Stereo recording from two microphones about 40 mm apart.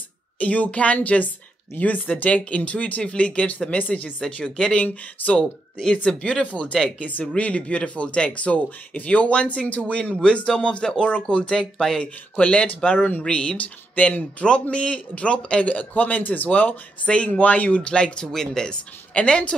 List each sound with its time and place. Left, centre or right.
0.4 s a man's voice: left
6.5 s speech: centre
7.0 s speech: left
7.3 s a man's voice: left
8.6 s a man's voice: left
11.5 s speech: centre
12.0 s a man's voice: left
13.2 s speech: left
13.6 s a man's voice: left
14.4 s a man's voice: left
19.1 s speech: left